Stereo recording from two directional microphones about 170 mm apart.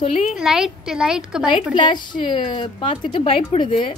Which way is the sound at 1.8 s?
25° left (ahead or behind).